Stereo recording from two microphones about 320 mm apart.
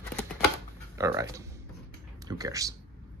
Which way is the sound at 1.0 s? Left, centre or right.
Centre.